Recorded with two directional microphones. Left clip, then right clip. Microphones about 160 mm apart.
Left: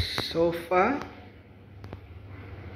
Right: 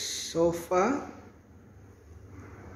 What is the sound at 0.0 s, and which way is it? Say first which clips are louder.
Speech: left 1 dB; 20° right (ahead or behind).